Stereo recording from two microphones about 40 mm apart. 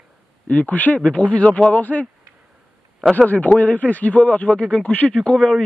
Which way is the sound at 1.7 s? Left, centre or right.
Left.